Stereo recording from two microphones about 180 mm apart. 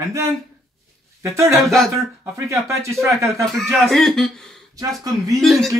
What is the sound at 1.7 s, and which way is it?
Speech, centre (ahead or behind).